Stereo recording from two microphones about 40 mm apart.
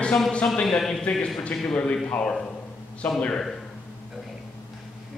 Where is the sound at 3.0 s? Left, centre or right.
Left.